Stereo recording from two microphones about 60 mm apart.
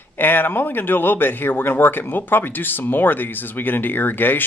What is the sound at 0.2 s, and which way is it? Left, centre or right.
Speech, left.